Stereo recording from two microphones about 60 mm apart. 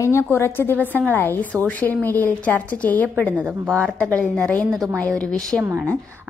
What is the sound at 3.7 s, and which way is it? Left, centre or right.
A woman's voice, centre.